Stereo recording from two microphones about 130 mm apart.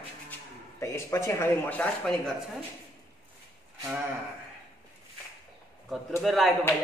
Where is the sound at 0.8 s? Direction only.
20° left (ahead or behind).